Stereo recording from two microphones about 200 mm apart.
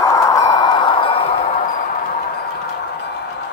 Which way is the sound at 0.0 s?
15° left (ahead or behind).